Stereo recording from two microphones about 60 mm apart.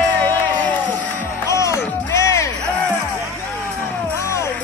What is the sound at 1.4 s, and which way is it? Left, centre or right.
Music, left.